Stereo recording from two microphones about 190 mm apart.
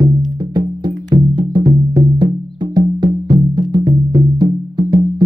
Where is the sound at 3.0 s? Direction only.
25° right (ahead or behind).